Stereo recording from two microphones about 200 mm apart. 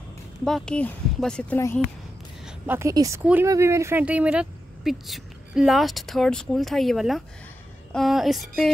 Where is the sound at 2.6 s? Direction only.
10° right (ahead or behind).